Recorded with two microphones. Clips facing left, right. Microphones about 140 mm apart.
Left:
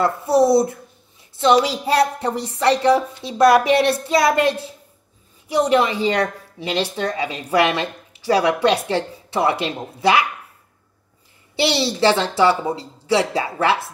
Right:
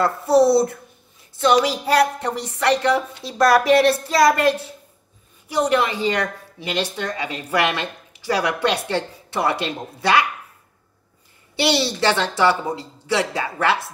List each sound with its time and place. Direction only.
0.0 s a woman's voice: 20° left (ahead or behind)
5.5 s a woman's voice: 25° left (ahead or behind)
11.5 s a woman's voice: 30° left (ahead or behind)